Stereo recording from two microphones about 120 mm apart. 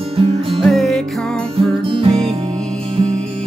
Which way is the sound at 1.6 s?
50° right (ahead or behind).